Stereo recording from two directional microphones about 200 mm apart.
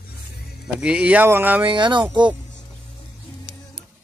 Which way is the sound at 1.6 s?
25° right (ahead or behind).